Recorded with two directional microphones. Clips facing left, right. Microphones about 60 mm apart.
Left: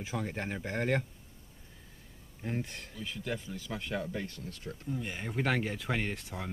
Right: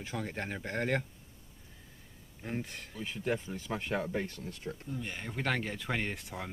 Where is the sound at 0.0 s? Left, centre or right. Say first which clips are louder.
Left 1 dB; centre.